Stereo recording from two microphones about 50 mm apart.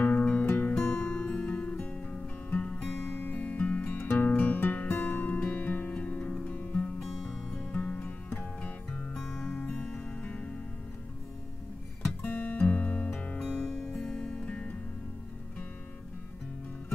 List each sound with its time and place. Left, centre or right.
0.0 s music: left
0.7 s music: left
1.2 s music: left
3.0 s music: left
4.0 s music: left
9.3 s music: left
12.2 s music: left
14.0 s music: centre